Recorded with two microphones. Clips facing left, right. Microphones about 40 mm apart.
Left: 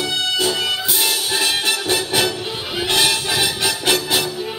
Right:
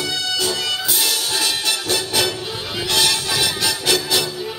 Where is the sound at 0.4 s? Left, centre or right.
Left.